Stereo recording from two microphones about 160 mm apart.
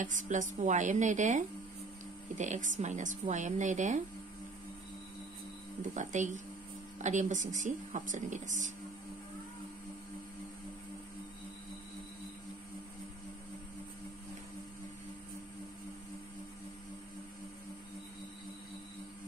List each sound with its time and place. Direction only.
0.0 s speech: 50° right (ahead or behind)
5.9 s speech: 50° right (ahead or behind)